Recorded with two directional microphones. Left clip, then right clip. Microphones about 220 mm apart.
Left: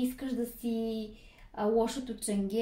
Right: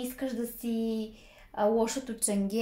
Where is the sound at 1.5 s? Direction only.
25° right (ahead or behind).